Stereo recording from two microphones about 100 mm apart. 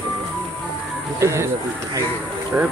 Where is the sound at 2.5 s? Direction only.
20° right (ahead or behind).